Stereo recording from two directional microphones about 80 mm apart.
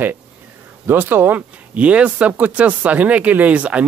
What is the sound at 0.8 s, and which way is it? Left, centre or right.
Speech, right.